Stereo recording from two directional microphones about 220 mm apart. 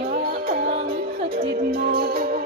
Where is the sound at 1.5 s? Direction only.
45° right (ahead or behind).